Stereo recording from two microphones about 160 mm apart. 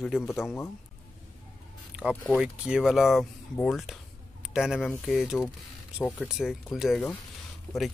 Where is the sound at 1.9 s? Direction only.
5° right (ahead or behind).